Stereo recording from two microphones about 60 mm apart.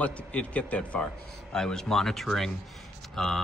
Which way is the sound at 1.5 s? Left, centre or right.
Centre.